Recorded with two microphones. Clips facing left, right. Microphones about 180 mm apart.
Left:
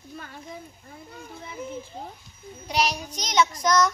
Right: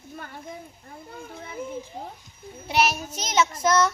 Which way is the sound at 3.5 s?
25° right (ahead or behind).